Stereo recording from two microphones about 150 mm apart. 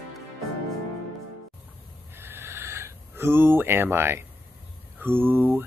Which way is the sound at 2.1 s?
15° right (ahead or behind).